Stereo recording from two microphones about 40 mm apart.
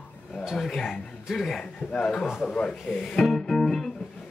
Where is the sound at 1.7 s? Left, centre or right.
Centre.